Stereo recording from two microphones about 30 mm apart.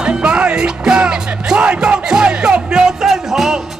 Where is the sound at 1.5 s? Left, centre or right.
Right.